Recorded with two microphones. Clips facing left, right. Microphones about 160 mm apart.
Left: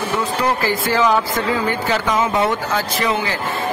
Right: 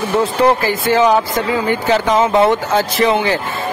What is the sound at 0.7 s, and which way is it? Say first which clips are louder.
Speech: right 4 dB; 20° right (ahead or behind).